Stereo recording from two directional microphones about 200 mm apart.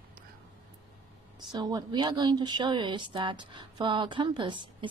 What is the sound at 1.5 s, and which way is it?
Speech, 20° right (ahead or behind).